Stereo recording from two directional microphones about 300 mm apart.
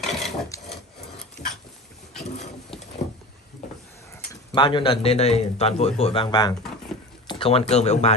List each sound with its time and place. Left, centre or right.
0.0 s wood: centre
4.3 s a man's voice: centre